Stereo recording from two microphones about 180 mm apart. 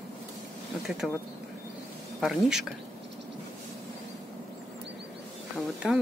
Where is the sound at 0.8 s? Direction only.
Centre (ahead or behind).